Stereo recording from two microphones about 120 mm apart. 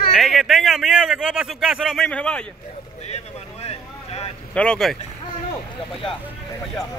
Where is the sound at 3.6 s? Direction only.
55° left (ahead or behind).